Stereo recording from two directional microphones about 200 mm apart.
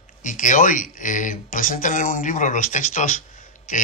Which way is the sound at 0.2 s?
40° left (ahead or behind).